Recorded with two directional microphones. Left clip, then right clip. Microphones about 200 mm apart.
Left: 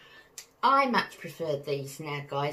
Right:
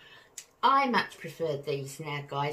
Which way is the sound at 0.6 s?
5° right (ahead or behind).